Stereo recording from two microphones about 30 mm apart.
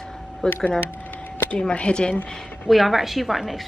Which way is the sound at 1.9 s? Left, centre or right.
Left.